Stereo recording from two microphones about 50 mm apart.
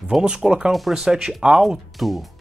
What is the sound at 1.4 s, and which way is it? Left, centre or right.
Speech, centre.